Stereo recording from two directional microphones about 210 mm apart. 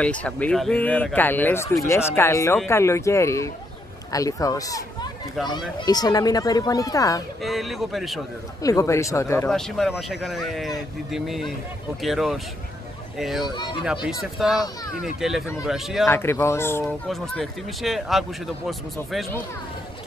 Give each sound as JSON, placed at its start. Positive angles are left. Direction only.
{"t": 0.0, "sound": "speech", "side_deg": 5}
{"t": 5.9, "sound": "speech", "side_deg": 20}
{"t": 7.4, "sound": "speech", "side_deg": 0}
{"t": 8.6, "sound": "speech", "side_deg": 15}
{"t": 9.5, "sound": "speech", "side_deg": 0}
{"t": 13.6, "sound": "speech", "side_deg": 25}
{"t": 14.4, "sound": "speech", "side_deg": 0}
{"t": 16.1, "sound": "speech", "side_deg": 10}
{"t": 16.8, "sound": "speech", "side_deg": 0}